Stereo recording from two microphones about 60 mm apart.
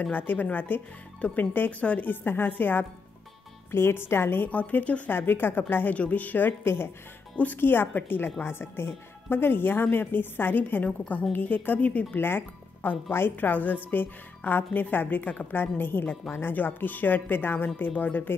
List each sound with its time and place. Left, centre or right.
0.0 s a woman's voice: left
4.5 s a woman's voice: left
5.1 s a woman's voice: left
12.2 s a woman's voice: left